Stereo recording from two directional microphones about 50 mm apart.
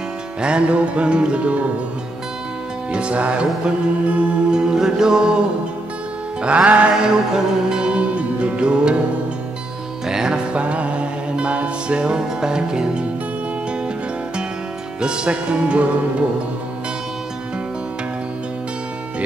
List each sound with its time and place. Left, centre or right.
0.4 s music: centre
2.9 s music: right
6.4 s music: right
10.0 s music: centre
15.0 s music: centre